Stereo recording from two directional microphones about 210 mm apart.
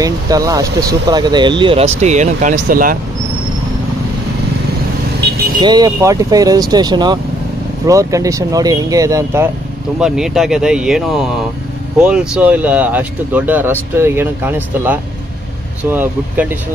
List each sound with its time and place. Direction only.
0.0 s speech: 15° right (ahead or behind); by 3.0 s 40° right (ahead or behind)
5.6 s speech: 20° right (ahead or behind)
9.9 s speech: 5° right (ahead or behind)